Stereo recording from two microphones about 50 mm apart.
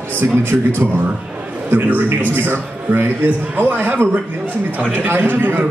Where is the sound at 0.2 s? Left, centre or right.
Right.